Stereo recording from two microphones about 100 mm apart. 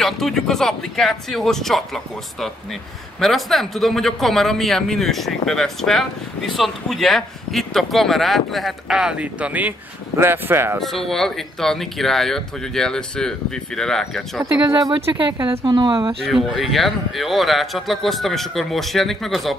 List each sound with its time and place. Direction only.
0.0 s speech: 5° left (ahead or behind)
3.2 s speech: centre (ahead or behind); by 10.8 s 25° right (ahead or behind)
10.8 s speech: centre (ahead or behind)
15.0 s a woman's voice: 75° right (ahead or behind)
15.6 s speech: 50° right (ahead or behind)
16.3 s speech: centre (ahead or behind)